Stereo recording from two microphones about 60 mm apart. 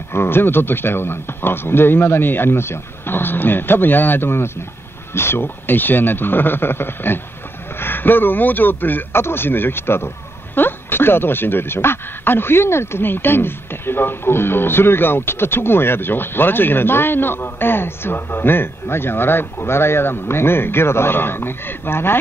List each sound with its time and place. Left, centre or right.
0.1 s speech: left